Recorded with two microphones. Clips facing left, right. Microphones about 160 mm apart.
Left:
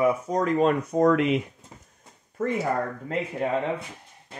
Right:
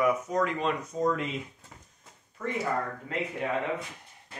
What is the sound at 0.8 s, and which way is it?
Speech, 70° left (ahead or behind).